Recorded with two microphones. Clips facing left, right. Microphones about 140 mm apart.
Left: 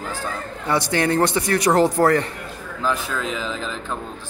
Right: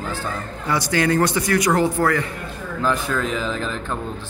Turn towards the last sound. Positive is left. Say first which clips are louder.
# right 3 dB
turn(degrees=0)  # may be behind; listen again after turning